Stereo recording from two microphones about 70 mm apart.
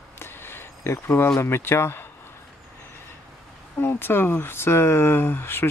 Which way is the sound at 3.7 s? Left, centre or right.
Left.